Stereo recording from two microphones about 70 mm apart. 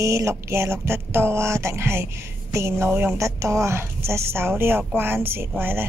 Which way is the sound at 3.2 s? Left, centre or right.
Right.